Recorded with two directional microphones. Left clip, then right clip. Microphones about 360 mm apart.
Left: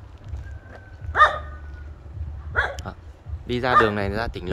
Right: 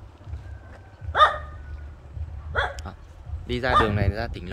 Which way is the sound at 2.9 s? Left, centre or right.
Centre.